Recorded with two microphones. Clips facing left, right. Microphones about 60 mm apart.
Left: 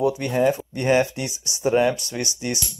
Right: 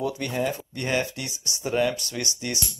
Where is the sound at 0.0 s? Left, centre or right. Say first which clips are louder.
Left 7 dB; centre.